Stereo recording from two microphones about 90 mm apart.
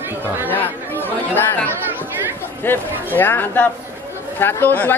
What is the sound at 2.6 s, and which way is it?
Speech, 25° left (ahead or behind).